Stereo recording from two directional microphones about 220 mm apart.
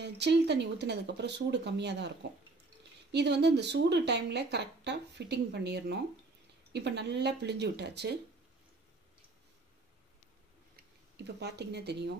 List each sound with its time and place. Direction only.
0.0 s speech: 50° right (ahead or behind)
11.2 s speech: 50° right (ahead or behind)